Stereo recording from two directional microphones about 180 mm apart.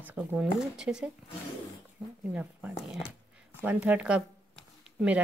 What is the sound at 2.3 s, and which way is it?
A woman's voice, 5° right (ahead or behind).